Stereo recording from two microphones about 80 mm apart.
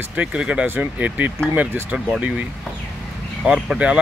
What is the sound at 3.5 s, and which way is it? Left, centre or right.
Speech, centre.